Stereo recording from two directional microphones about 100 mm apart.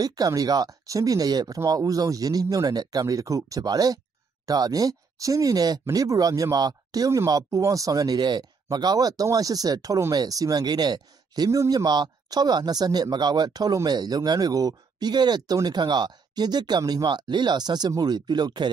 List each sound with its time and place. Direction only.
0.0 s speech: 40° right (ahead or behind)